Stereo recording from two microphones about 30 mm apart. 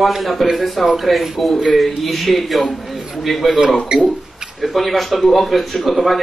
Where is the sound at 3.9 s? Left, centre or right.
Right.